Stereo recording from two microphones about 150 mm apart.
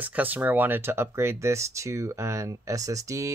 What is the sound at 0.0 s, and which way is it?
Speech, 10° right (ahead or behind).